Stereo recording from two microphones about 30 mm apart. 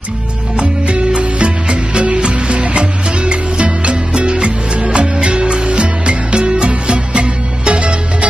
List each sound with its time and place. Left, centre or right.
0.6 s music: right